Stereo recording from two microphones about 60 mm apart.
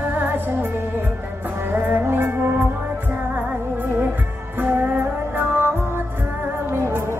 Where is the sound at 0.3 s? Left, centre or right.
Right.